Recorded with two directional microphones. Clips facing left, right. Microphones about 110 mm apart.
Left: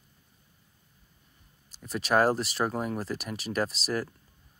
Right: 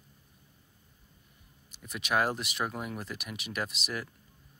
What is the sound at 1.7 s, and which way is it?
Speech, 35° left (ahead or behind).